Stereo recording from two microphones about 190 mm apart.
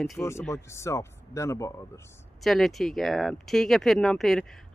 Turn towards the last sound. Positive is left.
turn(degrees=0)  # may be behind; listen again after turning